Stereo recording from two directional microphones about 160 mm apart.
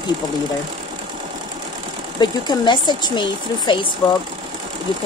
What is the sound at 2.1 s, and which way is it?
Speech, 30° left (ahead or behind).